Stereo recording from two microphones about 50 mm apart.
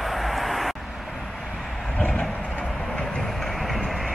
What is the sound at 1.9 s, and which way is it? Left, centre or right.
Vehicle, left.